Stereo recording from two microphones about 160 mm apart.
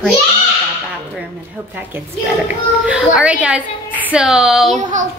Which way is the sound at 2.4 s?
5° right (ahead or behind).